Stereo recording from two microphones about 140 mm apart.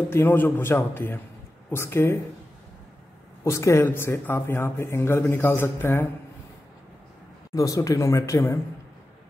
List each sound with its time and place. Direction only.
0.1 s speech: 15° left (ahead or behind)
3.4 s speech: 20° left (ahead or behind)
7.5 s speech: 25° left (ahead or behind)